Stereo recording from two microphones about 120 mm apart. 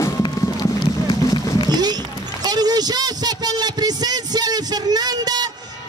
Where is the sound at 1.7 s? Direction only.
35° right (ahead or behind).